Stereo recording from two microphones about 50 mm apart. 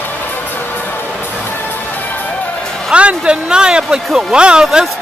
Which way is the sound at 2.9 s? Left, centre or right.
Right.